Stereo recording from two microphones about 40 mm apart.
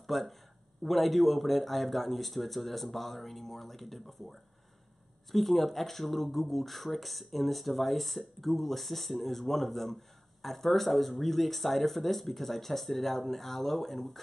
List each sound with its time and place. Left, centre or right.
0.0 s speech: centre